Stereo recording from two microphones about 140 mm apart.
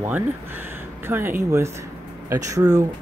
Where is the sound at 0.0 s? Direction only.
15° right (ahead or behind).